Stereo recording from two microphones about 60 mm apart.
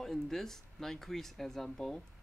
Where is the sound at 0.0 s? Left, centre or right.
Centre.